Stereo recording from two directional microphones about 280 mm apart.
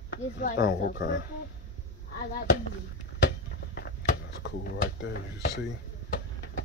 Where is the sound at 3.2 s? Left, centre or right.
Left.